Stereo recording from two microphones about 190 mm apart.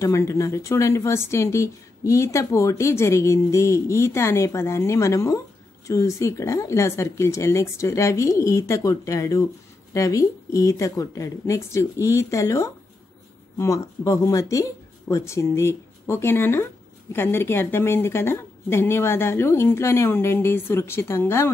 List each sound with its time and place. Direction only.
0.0 s speech: 15° left (ahead or behind)